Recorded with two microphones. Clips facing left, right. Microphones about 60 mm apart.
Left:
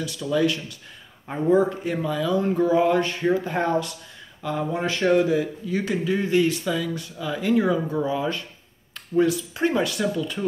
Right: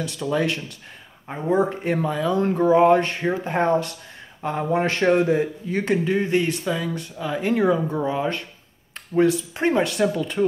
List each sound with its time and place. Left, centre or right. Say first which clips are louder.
0.0 s speech: left 1 dB; right
1.3 s speech: left 3 dB; right
1.7 s speech: right 2 dB; right